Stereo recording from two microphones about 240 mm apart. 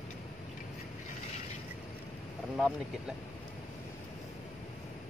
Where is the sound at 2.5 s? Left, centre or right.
Centre.